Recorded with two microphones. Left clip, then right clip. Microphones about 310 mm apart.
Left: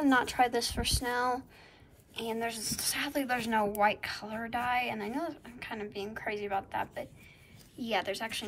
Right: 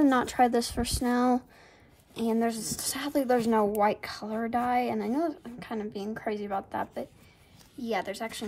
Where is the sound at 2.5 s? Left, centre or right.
Centre.